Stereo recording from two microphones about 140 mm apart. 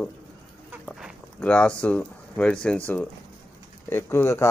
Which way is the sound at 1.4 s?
10° left (ahead or behind).